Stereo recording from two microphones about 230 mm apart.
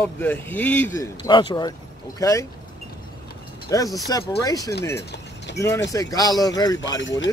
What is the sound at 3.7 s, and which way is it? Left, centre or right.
Speech, centre.